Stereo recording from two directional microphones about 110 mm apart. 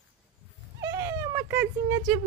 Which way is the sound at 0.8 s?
35° right (ahead or behind).